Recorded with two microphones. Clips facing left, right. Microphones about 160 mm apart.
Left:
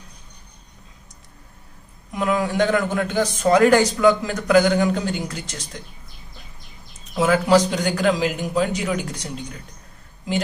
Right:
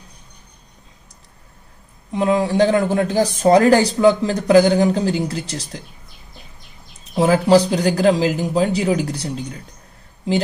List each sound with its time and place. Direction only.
2.1 s a man's voice: 30° right (ahead or behind)
7.2 s a man's voice: 30° right (ahead or behind)